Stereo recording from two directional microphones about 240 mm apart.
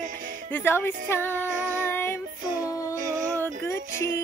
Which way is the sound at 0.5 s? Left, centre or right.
Centre.